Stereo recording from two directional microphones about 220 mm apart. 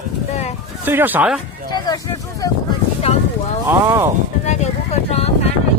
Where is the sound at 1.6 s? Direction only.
20° left (ahead or behind).